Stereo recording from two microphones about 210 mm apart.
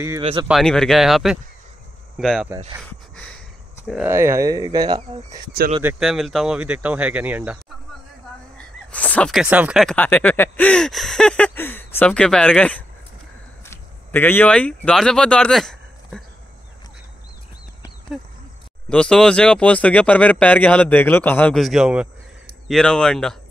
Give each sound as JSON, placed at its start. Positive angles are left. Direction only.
{"t": 0.2, "sound": "speech", "side_deg": -25}
{"t": 0.5, "sound": "speech", "side_deg": 0}
{"t": 3.8, "sound": "speech", "side_deg": 0}
{"t": 4.1, "sound": "speech", "side_deg": -10}
{"t": 5.8, "sound": "speech", "side_deg": -5}
{"t": 8.5, "sound": "speech", "side_deg": 5}
{"t": 18.9, "sound": "speech", "side_deg": 5}